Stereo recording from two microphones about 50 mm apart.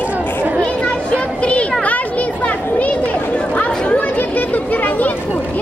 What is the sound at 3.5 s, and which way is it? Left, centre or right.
Chatter, left.